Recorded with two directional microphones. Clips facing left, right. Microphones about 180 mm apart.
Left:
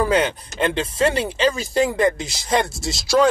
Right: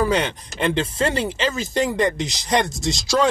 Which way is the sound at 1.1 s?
25° right (ahead or behind).